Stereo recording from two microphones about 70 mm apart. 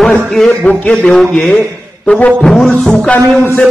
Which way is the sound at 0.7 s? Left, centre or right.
Centre.